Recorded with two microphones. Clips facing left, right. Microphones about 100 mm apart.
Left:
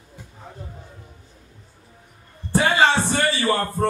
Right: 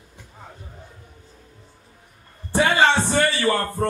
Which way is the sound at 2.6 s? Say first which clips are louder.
Right 1 dB; 20° left (ahead or behind).